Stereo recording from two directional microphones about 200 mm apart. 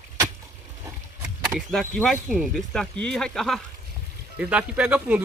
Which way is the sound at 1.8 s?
5° left (ahead or behind).